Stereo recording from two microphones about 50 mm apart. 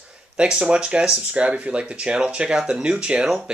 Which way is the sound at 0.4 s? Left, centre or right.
Centre.